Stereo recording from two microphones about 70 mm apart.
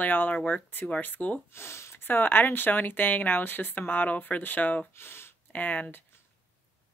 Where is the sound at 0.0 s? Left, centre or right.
Left.